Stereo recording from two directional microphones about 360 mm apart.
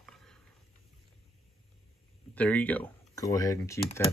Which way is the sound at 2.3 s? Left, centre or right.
Centre.